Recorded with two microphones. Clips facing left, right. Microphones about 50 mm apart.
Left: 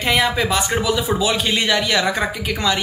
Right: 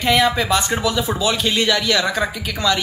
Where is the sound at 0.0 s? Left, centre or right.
Centre.